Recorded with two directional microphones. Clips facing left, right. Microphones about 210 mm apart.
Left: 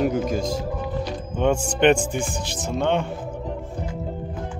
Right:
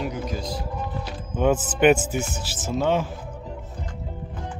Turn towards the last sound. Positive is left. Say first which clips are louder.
# even
turn(degrees=-5)  # may be behind; listen again after turning